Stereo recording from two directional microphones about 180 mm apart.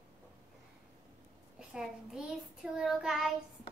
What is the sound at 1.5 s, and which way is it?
Child singing, 5° right (ahead or behind).